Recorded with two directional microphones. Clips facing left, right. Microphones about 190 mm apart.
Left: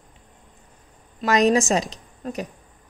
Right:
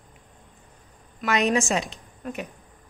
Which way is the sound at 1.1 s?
40° left (ahead or behind).